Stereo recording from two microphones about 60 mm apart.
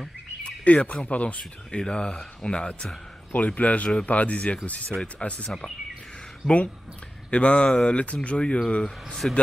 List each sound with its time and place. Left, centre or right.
0.7 s speech: left
7.2 s speech: centre